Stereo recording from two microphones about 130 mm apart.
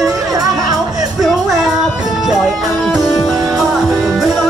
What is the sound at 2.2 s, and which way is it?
Music, centre (ahead or behind).